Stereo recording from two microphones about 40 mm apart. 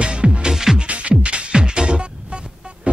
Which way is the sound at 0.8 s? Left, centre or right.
Right.